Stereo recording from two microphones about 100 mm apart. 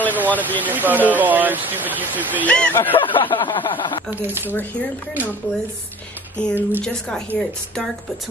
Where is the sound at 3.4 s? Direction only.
55° left (ahead or behind).